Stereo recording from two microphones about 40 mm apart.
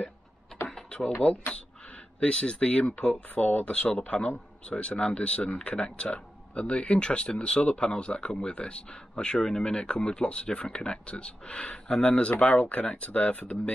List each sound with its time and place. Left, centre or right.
0.8 s speech: left
3.3 s speech: left